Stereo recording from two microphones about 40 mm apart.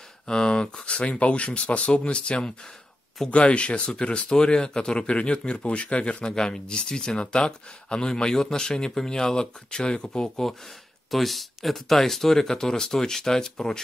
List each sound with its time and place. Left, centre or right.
0.3 s speech: left
6.2 s speech: centre
11.1 s speech: centre